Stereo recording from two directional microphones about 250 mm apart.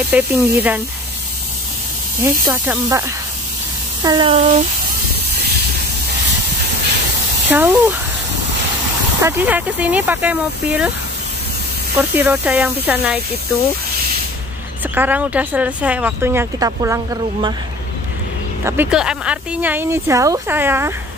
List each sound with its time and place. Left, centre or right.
0.1 s speech: centre
2.4 s speech: centre
7.4 s speech: centre
9.2 s speech: centre
12.0 s speech: centre
15.0 s speech: centre
18.6 s speech: centre